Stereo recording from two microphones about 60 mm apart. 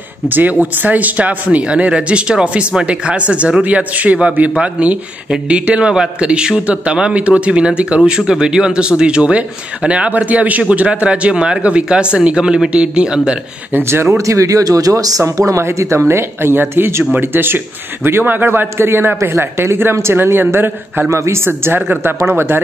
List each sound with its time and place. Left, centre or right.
0.3 s speech: right
14.1 s a man's voice: right